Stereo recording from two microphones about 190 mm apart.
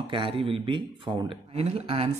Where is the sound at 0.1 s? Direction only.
30° right (ahead or behind).